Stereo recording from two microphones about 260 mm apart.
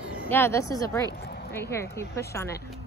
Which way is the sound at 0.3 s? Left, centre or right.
Centre.